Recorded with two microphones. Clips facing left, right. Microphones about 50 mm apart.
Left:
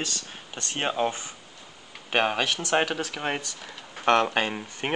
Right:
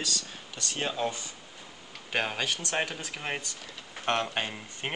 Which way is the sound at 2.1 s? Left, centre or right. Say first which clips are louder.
Left 6 dB; left.